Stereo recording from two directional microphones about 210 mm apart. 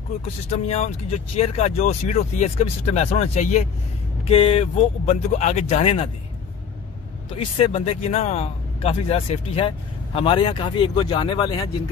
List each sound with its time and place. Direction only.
0.2 s speech: 30° left (ahead or behind)
7.3 s speech: 25° left (ahead or behind)